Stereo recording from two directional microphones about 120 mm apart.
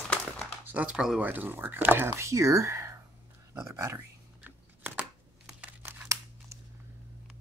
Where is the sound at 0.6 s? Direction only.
10° right (ahead or behind).